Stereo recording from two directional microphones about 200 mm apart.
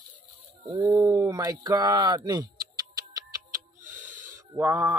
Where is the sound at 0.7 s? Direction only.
15° right (ahead or behind).